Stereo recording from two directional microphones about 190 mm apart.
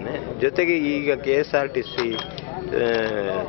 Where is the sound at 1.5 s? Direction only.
25° left (ahead or behind).